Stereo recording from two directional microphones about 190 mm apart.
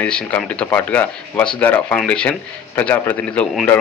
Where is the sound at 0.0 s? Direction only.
5° left (ahead or behind).